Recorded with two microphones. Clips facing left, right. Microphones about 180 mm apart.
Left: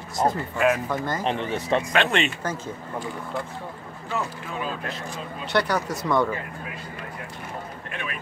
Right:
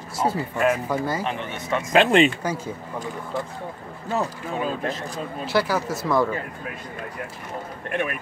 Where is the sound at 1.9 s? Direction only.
35° right (ahead or behind).